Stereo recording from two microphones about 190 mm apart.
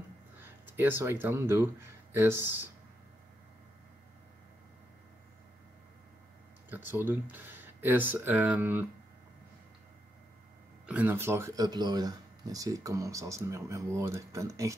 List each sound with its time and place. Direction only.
0.4 s speech: 10° right (ahead or behind)
6.7 s speech: 10° right (ahead or behind)
10.9 s speech: 10° right (ahead or behind)